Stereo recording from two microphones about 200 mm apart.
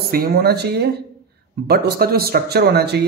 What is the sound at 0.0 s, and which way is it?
Speech, 50° right (ahead or behind).